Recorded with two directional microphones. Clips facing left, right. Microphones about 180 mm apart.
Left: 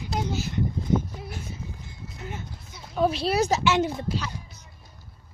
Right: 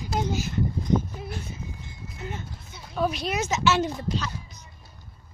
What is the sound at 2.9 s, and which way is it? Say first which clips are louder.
Speech: left 3 dB; 25° left (ahead or behind).